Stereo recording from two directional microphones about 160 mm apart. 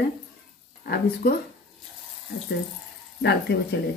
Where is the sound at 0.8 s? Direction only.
75° left (ahead or behind).